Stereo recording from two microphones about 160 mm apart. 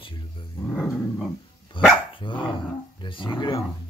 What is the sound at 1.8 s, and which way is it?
Speech, 30° left (ahead or behind).